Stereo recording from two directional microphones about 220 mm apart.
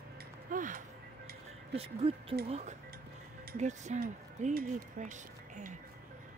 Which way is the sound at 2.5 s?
30° right (ahead or behind).